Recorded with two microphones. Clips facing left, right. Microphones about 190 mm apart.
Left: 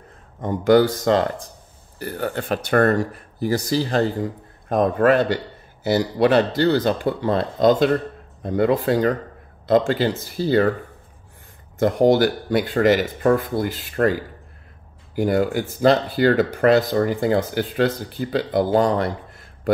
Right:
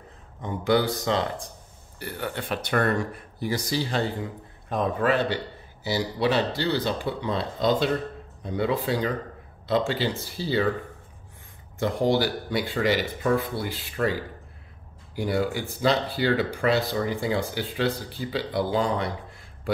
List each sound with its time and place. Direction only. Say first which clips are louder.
0.4 s speech: left 8 dB; 45° left (ahead or behind)
11.8 s speech: left 7 dB; 50° left (ahead or behind)
15.1 s speech: left 6 dB; 50° left (ahead or behind)